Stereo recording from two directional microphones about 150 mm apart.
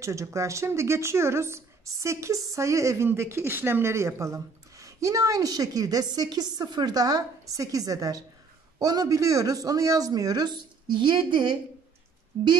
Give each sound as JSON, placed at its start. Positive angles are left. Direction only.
{"t": 0.0, "sound": "speech", "side_deg": -20}